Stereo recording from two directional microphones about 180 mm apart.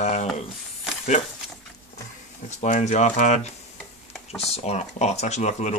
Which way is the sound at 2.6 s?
40° left (ahead or behind).